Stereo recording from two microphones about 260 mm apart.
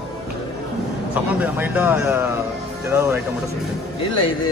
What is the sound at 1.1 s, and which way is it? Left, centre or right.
Speech, centre.